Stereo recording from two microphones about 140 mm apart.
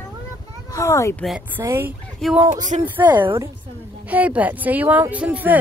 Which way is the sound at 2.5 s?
65° right (ahead or behind).